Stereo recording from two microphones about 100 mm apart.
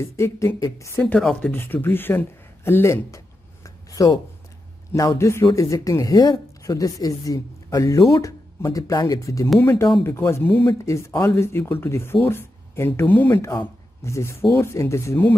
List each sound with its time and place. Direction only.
0.0 s speech: 30° left (ahead or behind)
1.4 s speech: 20° left (ahead or behind)
3.6 s a sound: 35° left (ahead or behind)
4.9 s speech: 30° left (ahead or behind)